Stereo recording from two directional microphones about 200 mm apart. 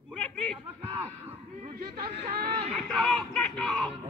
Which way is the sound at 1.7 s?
45° right (ahead or behind).